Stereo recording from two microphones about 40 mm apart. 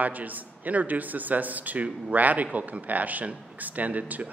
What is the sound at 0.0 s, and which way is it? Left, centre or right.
A man's voice, right.